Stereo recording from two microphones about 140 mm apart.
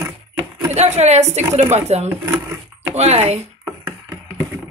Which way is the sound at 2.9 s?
50° right (ahead or behind).